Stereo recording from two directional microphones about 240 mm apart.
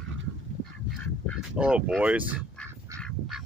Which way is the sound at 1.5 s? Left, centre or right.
Centre.